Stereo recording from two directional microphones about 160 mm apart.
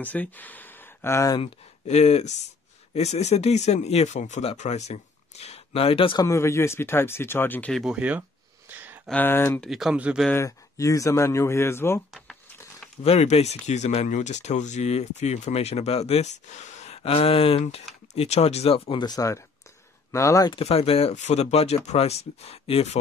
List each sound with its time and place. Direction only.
0.0 s speech: 10° left (ahead or behind)
1.4 s speech: 40° left (ahead or behind)
6.2 s speech: 15° left (ahead or behind)
7.8 s a sound: 10° right (ahead or behind)
9.0 s speech: 10° left (ahead or behind)
9.7 s speech: 5° right (ahead or behind)
10.3 s speech: 20° left (ahead or behind)
13.0 s speech: 40° left (ahead or behind); by 20.5 s 20° left (ahead or behind)
20.5 s speech: 40° left (ahead or behind)